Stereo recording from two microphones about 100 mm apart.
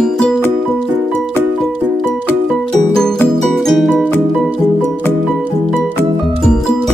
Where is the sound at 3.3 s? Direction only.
Centre (ahead or behind).